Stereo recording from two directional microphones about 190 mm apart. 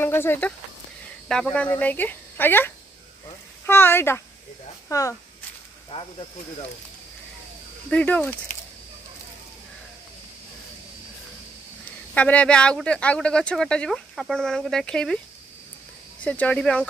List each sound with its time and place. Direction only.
0.0 s speech: 10° left (ahead or behind)
7.9 s speech: 10° left (ahead or behind)
12.1 s speech: 5° left (ahead or behind)
16.3 s speech: 5° left (ahead or behind)